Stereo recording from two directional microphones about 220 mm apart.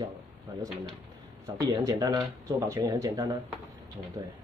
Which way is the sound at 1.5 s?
15° right (ahead or behind).